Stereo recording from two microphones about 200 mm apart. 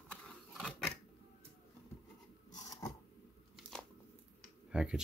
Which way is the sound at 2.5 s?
20° left (ahead or behind).